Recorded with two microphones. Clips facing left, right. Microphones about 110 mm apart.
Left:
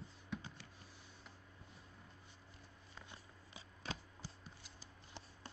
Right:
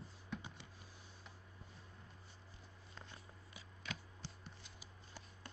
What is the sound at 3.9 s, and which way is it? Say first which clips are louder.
Chopping: left 2 dB; 35° left (ahead or behind).